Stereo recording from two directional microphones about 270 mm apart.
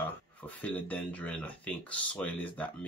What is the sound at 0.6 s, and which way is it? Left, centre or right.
Speech, centre.